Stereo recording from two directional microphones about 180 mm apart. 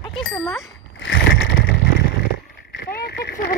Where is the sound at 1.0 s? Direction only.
75° left (ahead or behind).